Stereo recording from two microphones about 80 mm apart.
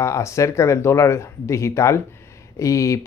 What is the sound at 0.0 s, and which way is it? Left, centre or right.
Speech, left.